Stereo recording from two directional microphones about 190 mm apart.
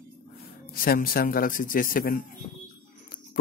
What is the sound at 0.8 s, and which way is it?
A man's voice, 50° left (ahead or behind).